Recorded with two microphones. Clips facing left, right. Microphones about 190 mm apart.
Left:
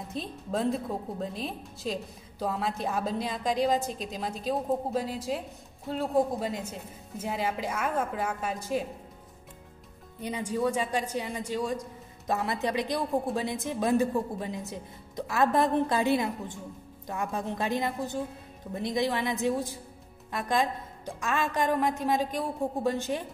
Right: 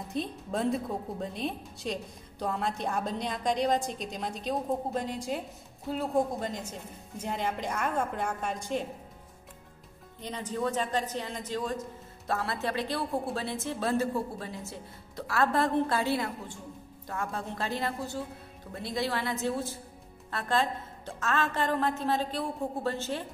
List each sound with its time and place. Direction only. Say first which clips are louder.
0.1 s a woman's voice: even; centre (ahead or behind)
10.2 s a woman's voice: left 3 dB; 10° left (ahead or behind)